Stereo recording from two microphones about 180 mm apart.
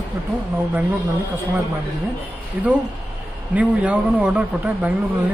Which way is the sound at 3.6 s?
10° right (ahead or behind).